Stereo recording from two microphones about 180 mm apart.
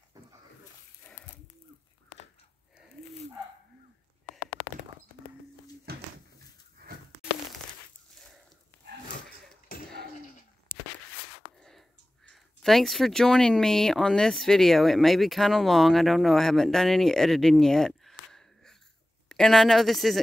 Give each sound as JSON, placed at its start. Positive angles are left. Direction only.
{"t": 1.0, "sound": "livestock", "side_deg": 5}
{"t": 5.9, "sound": "a sound", "side_deg": -60}
{"t": 12.3, "sound": "speech", "side_deg": 0}